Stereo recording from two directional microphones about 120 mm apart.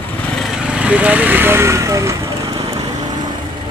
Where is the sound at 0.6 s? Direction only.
10° right (ahead or behind); by 2.1 s 25° right (ahead or behind).